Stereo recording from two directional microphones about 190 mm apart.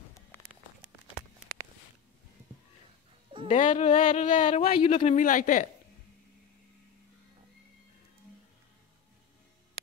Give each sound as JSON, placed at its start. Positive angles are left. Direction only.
{"t": 3.4, "sound": "speech", "side_deg": 40}